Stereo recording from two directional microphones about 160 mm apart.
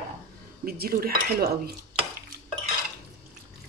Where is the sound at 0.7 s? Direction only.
70° right (ahead or behind).